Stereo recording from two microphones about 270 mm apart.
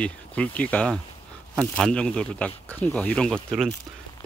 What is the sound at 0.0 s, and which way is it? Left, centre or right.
Speech, centre.